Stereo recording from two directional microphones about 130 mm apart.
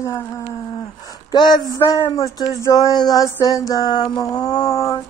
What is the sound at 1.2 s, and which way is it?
Speech, 35° left (ahead or behind).